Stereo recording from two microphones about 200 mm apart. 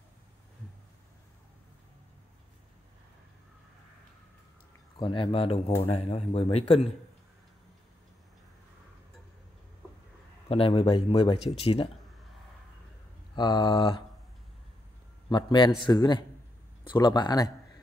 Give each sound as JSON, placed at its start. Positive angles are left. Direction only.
{"t": 4.9, "sound": "speech", "side_deg": 25}
{"t": 10.5, "sound": "speech", "side_deg": 30}
{"t": 13.4, "sound": "speech", "side_deg": 25}
{"t": 15.2, "sound": "speech", "side_deg": 20}